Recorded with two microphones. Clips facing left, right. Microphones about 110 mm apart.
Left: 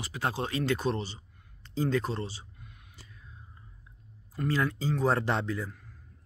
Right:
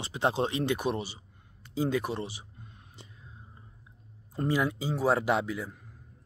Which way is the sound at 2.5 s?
25° right (ahead or behind).